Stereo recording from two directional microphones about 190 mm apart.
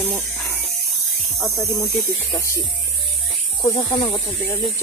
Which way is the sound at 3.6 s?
25° left (ahead or behind).